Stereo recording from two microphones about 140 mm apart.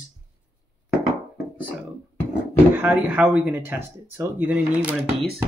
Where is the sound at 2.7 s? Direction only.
10° right (ahead or behind).